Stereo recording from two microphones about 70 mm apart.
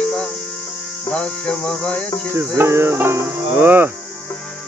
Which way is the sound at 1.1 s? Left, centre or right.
Centre.